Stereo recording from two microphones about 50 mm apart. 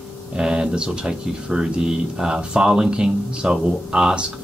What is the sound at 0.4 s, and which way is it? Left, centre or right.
Speech, centre.